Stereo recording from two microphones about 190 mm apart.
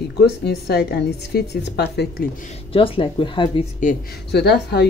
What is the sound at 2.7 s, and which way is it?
Speech, 30° left (ahead or behind).